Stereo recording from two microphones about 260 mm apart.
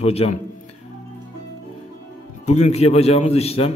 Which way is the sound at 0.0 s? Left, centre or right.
Left.